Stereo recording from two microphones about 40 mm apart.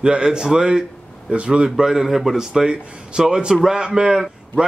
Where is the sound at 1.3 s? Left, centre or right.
Right.